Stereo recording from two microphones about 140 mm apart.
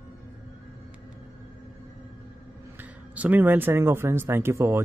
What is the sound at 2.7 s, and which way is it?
Speech, 10° right (ahead or behind).